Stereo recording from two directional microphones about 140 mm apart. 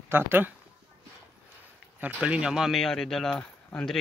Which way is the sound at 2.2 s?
5° right (ahead or behind).